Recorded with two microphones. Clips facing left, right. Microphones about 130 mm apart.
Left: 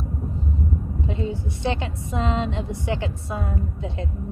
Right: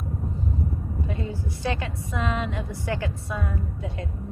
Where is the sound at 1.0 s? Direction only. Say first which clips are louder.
Left 4 dB; 20° left (ahead or behind).